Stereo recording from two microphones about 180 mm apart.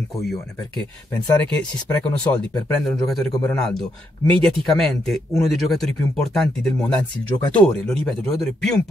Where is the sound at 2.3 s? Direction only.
15° left (ahead or behind).